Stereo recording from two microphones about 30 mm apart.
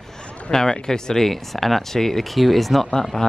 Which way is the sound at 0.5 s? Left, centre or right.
Left.